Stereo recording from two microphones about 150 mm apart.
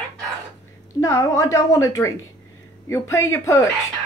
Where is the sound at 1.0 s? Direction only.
20° left (ahead or behind).